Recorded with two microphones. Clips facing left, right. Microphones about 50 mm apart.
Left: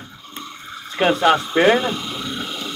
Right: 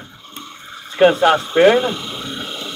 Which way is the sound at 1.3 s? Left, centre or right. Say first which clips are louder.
Right 1 dB; centre.